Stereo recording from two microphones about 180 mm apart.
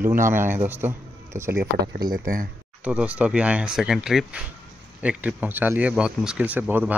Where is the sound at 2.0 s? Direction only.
50° right (ahead or behind).